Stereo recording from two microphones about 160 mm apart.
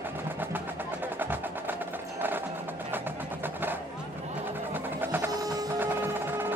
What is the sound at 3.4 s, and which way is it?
Vehicle, 10° right (ahead or behind).